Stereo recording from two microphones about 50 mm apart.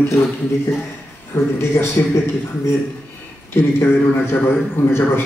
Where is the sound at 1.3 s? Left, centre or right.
Left.